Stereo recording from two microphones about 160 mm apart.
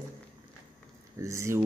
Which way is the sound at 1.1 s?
20° right (ahead or behind).